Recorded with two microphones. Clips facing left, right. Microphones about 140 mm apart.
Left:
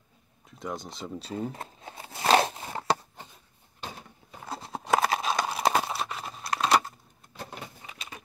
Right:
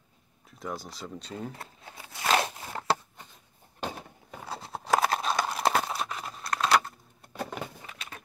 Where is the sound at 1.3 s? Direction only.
20° left (ahead or behind).